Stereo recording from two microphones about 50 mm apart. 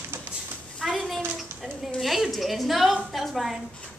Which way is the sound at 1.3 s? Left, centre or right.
Centre.